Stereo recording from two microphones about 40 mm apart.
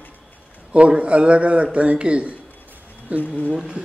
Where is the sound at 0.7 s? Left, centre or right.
Right.